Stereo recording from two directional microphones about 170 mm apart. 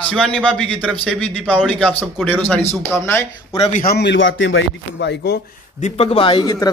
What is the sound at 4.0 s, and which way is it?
A man's voice, 90° left.